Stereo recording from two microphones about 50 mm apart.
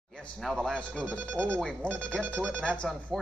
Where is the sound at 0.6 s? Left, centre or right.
Centre.